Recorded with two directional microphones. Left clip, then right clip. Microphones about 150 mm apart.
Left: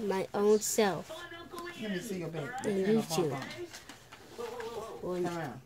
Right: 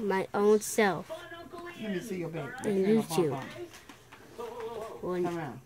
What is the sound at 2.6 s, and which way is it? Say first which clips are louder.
Speech: right 3 dB; 15° right (ahead or behind).